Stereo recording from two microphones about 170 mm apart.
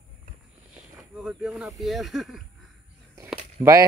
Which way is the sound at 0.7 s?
5° right (ahead or behind).